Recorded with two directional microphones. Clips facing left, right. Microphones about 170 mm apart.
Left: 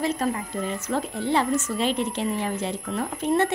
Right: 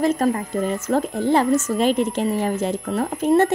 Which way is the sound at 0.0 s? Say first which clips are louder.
Right 6 dB; 45° right (ahead or behind).